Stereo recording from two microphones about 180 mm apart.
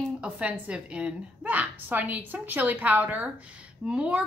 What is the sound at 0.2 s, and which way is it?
A woman's voice, 5° right (ahead or behind).